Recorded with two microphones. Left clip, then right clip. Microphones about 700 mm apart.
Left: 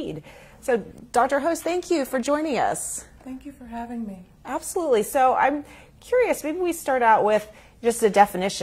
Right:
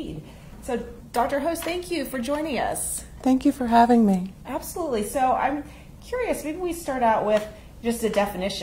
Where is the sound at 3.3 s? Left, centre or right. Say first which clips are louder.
Right 18 dB; right.